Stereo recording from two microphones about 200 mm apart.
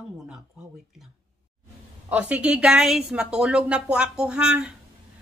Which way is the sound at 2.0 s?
5° right (ahead or behind).